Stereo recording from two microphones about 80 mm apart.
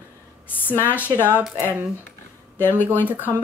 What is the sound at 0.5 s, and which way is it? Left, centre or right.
Speech, left.